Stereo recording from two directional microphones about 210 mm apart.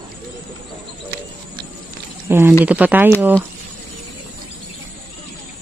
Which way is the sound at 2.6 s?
5° right (ahead or behind).